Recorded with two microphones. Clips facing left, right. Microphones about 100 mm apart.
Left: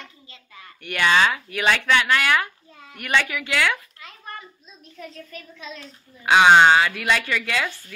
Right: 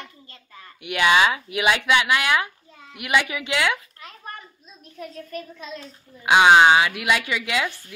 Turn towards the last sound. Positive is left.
turn(degrees=-15)  # may be behind; listen again after turning